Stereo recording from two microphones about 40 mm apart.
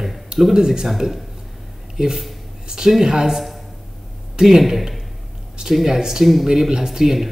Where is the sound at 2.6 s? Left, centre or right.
Centre.